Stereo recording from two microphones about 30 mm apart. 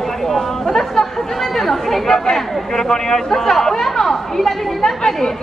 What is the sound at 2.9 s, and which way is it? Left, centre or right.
Speech, centre.